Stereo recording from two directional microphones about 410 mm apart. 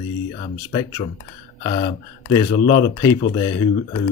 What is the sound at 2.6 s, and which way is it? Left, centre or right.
Speech, centre.